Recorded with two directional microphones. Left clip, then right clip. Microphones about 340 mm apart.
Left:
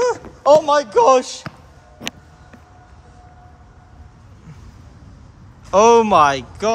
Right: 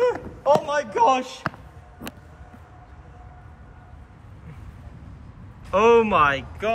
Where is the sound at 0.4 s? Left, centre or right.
Left.